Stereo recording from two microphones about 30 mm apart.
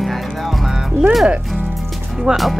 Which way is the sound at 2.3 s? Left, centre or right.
Right.